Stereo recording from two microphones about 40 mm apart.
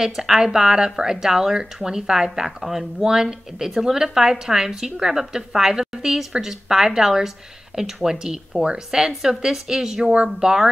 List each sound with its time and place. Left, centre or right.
0.0 s a woman's voice: centre